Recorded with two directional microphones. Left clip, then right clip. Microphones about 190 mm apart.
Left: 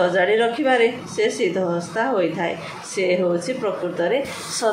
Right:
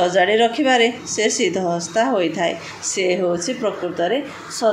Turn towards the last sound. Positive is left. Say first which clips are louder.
# even
turn(degrees=-35)  # may be behind; listen again after turning